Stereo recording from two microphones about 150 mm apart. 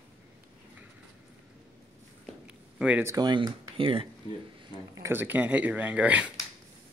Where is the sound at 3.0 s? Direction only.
25° right (ahead or behind).